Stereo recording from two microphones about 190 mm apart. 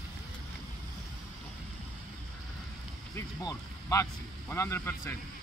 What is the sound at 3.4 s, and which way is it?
Speech, 20° left (ahead or behind).